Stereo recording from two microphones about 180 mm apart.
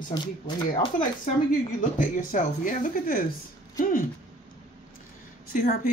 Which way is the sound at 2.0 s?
50° left (ahead or behind).